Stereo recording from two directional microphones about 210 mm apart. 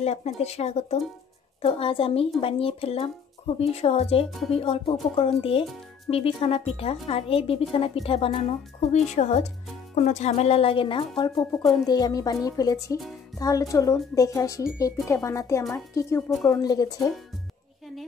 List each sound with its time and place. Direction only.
0.0 s a woman's voice: 30° left (ahead or behind); by 16.3 s 15° left (ahead or behind)
16.3 s speech: centre (ahead or behind)
16.6 s speech: 15° left (ahead or behind)